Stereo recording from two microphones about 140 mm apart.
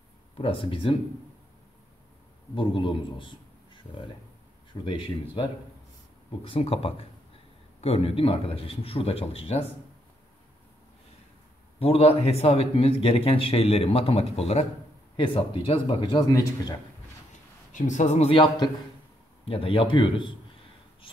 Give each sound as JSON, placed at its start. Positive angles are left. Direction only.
{"t": 0.4, "sound": "speech", "side_deg": 40}
{"t": 2.5, "sound": "a man's voice", "side_deg": 35}
{"t": 11.8, "sound": "a man's voice", "side_deg": 45}
{"t": 16.3, "sound": "a man's voice", "side_deg": 25}
{"t": 17.7, "sound": "a man's voice", "side_deg": 60}